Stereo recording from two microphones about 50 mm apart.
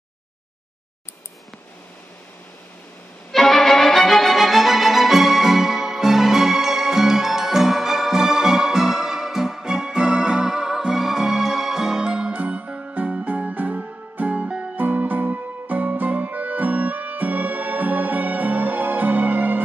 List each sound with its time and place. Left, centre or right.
3.3 s music: centre; by 14.7 s right
14.8 s music: right